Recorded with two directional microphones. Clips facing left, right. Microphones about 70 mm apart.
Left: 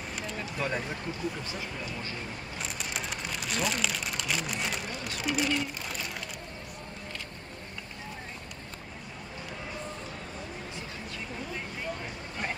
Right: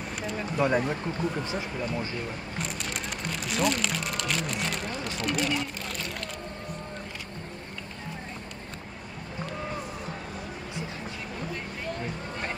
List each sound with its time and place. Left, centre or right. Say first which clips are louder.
0.4 s speech: right 8 dB; centre
1.1 s speech: right 5 dB; right
2.6 s speech: right 1 dB; centre
5.5 s a sound: right 1 dB; centre